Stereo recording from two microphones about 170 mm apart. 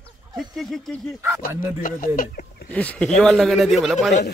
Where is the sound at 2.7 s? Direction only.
10° left (ahead or behind).